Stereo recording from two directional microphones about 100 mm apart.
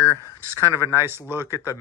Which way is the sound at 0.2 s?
35° left (ahead or behind).